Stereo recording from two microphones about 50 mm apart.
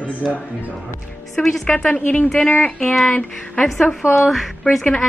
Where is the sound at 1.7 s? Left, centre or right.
Left.